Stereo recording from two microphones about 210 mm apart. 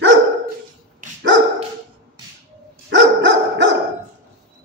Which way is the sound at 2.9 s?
60° right (ahead or behind).